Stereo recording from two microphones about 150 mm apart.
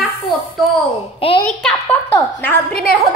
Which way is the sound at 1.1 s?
40° left (ahead or behind).